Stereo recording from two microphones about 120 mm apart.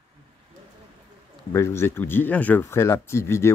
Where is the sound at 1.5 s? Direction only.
20° left (ahead or behind).